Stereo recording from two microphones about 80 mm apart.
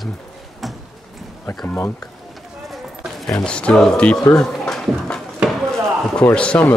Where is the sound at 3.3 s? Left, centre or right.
Centre.